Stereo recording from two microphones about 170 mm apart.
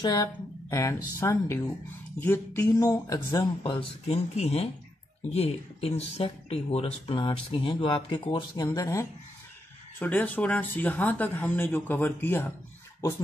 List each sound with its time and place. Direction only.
0.0 s speech: 25° left (ahead or behind)
8.6 s speech: 20° left (ahead or behind)